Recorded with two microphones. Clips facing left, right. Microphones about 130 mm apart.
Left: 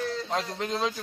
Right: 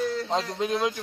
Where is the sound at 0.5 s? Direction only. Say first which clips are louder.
Right 3 dB; 15° right (ahead or behind).